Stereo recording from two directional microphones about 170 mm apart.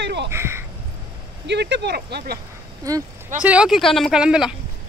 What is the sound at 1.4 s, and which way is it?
Speech, 85° right.